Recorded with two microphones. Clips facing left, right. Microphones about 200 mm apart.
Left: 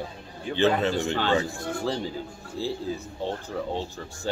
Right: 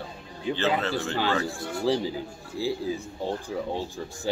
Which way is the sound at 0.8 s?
15° left (ahead or behind).